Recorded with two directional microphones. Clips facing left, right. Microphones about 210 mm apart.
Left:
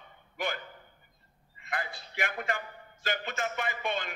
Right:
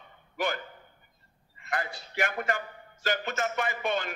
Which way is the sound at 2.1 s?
45° right (ahead or behind).